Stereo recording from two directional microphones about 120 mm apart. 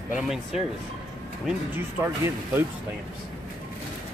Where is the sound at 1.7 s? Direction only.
20° right (ahead or behind).